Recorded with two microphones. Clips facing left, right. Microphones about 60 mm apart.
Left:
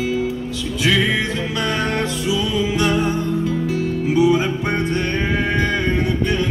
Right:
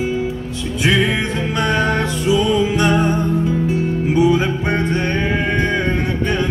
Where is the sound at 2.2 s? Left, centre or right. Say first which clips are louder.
Right 7 dB; right.